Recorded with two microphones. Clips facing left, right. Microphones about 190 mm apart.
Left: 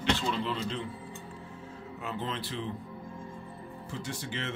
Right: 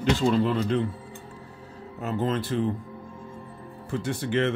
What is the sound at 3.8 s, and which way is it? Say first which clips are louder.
Speech: right 10 dB; 55° right (ahead or behind).